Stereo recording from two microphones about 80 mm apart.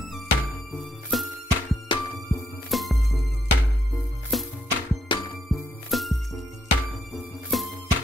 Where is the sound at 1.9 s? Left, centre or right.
Left.